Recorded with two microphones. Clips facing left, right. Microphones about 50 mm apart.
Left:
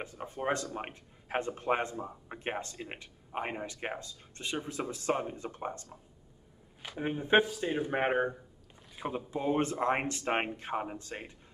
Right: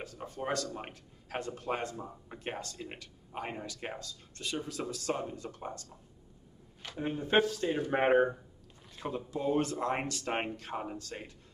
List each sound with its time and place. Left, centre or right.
0.0 s a man's voice: left
7.9 s speech: centre
8.9 s a man's voice: centre